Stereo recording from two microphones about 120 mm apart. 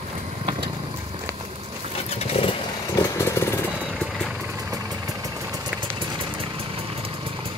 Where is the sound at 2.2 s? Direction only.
55° left (ahead or behind).